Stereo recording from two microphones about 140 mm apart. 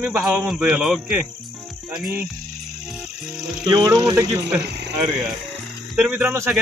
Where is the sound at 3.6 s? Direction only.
25° right (ahead or behind).